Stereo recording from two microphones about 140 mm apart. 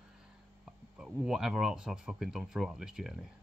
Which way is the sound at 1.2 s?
5° right (ahead or behind).